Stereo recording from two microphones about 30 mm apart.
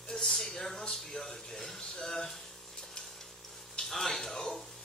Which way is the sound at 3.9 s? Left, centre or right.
Centre.